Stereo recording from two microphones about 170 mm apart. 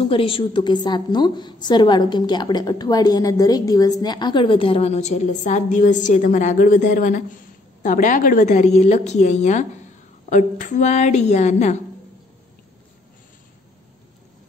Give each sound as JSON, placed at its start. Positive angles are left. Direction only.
{"t": 0.0, "sound": "a woman's voice", "side_deg": 30}